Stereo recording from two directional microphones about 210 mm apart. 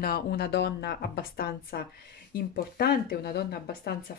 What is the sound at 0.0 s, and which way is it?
Speech, 45° left (ahead or behind).